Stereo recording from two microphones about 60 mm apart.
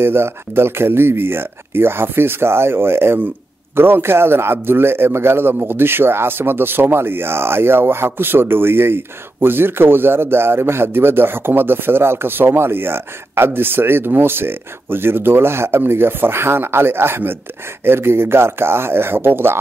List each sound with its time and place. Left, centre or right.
0.0 s a man's voice: right